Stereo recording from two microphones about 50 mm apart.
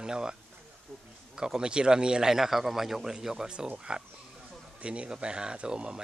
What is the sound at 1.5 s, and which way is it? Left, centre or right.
Speech, centre.